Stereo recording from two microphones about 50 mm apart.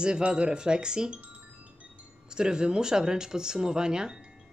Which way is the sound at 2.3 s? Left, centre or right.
Centre.